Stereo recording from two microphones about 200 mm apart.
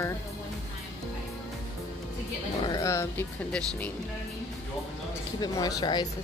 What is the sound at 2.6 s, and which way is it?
Speech, 15° left (ahead or behind).